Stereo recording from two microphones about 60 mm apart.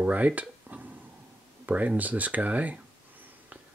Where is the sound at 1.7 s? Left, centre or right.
Right.